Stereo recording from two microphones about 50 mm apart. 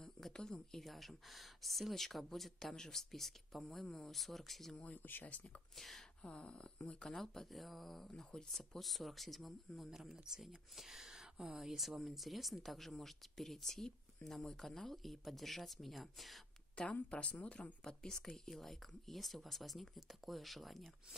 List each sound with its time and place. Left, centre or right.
0.0 s speech: centre
4.9 s speech: left
5.8 s speech: centre
6.2 s speech: centre
7.2 s speech: centre
10.1 s speech: centre
16.7 s speech: left
17.8 s speech: centre